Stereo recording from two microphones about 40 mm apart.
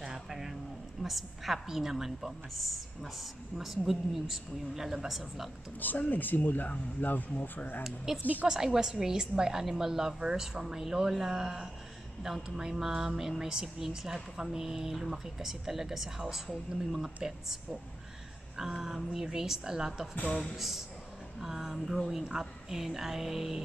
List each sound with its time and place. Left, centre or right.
0.0 s a sound: centre
1.0 s a woman's voice: centre
5.8 s speech: left
7.8 s a woman's voice: centre
18.6 s a woman's voice: centre